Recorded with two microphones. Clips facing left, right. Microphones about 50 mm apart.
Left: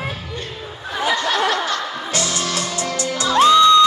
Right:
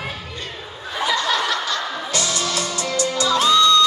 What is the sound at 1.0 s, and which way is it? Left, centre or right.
Music, left.